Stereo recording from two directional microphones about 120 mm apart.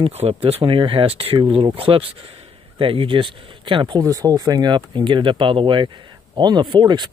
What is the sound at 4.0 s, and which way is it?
Speech, 25° right (ahead or behind).